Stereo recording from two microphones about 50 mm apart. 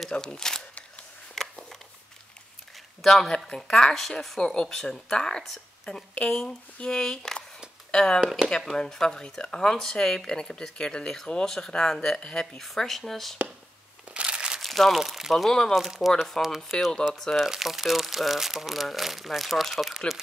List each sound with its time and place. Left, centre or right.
0.2 s speech: centre
1.3 s a sound: centre
3.0 s speech: centre
14.1 s crumpling: centre
14.6 s speech: centre
15.3 s speech: centre
15.8 s speech: centre
17.1 s speech: centre
17.4 s speech: centre